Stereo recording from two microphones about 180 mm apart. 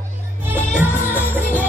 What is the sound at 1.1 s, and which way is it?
Music, 10° right (ahead or behind).